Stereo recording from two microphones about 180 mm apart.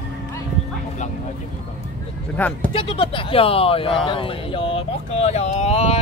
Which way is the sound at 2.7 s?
30° left (ahead or behind).